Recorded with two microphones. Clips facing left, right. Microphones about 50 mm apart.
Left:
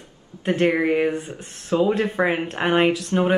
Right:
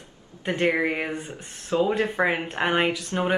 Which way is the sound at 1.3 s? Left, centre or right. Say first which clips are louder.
Left 3 dB; left.